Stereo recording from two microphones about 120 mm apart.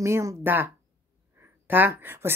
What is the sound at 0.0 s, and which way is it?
Speech, 25° right (ahead or behind).